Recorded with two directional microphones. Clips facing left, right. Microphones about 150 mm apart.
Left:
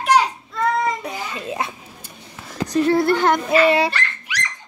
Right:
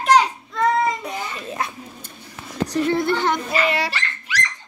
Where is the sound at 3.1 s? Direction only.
50° left (ahead or behind).